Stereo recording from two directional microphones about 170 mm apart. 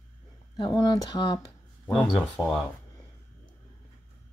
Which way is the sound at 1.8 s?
5° left (ahead or behind).